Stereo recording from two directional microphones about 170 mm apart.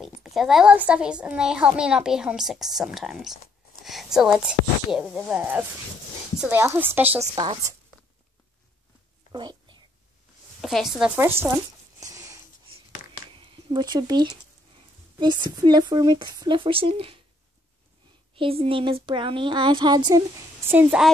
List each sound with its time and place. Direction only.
0.2 s a woman's voice: centre (ahead or behind); by 7.5 s 20° right (ahead or behind)
9.3 s a sound: 25° right (ahead or behind)
10.6 s speech: centre (ahead or behind)
11.1 s a woman's voice: 15° right (ahead or behind)
12.0 s a sound: 20° right (ahead or behind)
13.4 s speech: 30° right (ahead or behind)
18.3 s speech: 35° right (ahead or behind)
20.7 s a woman's voice: 5° right (ahead or behind)